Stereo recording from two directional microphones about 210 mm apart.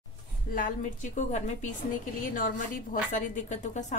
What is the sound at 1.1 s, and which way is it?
A woman's voice, 35° left (ahead or behind).